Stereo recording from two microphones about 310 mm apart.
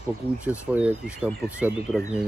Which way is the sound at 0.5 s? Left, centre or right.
Centre.